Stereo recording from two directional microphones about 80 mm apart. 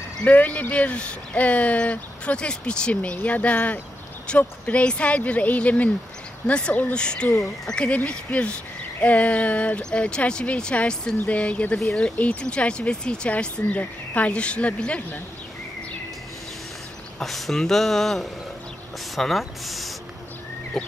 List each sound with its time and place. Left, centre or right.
0.2 s speech: left
11.8 s speech: centre
17.2 s speech: centre